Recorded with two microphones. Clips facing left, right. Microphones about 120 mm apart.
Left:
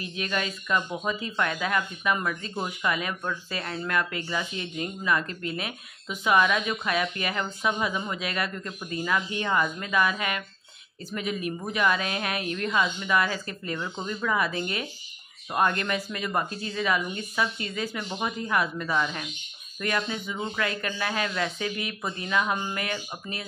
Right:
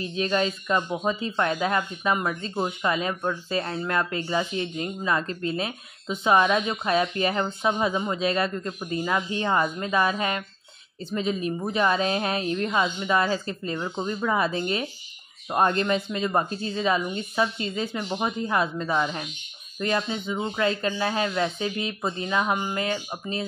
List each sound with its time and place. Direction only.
0.0 s speech: 30° right (ahead or behind)